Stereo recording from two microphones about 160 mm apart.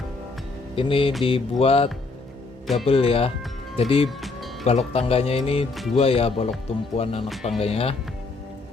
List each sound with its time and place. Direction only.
0.7 s speech: 35° left (ahead or behind)
2.6 s speech: centre (ahead or behind)
2.9 s speech: 35° left (ahead or behind)